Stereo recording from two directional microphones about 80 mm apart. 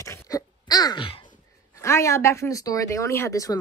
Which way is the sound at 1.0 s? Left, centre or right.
Left.